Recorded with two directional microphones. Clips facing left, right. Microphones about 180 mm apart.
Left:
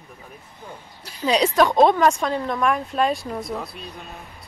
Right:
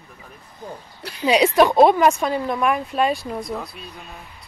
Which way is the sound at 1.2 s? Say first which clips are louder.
Right 3 dB; 10° right (ahead or behind).